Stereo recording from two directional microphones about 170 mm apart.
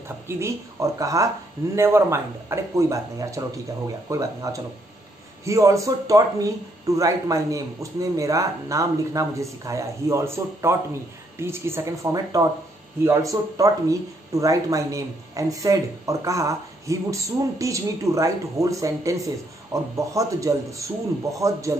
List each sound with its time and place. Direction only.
0.3 s speech: 15° right (ahead or behind)